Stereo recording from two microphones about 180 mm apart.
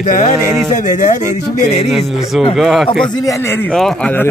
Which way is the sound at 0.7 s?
45° left (ahead or behind).